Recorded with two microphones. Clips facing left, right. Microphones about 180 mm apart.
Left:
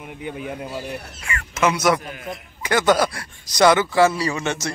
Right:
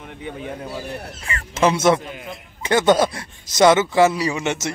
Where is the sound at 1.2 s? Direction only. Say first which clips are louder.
Right 2 dB; 35° right (ahead or behind).